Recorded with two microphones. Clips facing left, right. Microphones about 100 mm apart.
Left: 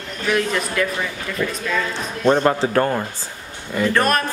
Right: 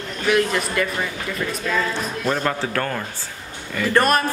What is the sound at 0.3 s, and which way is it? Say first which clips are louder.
Speech: right 1 dB; centre (ahead or behind).